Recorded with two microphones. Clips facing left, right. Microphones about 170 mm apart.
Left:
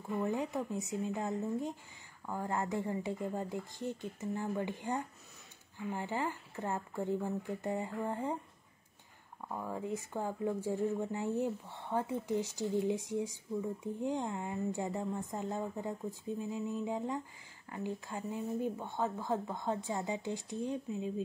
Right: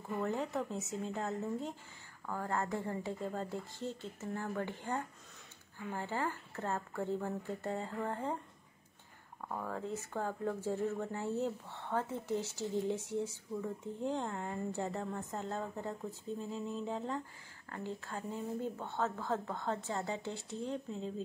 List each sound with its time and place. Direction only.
0.2 s speech: 15° left (ahead or behind)
9.5 s speech: 15° left (ahead or behind)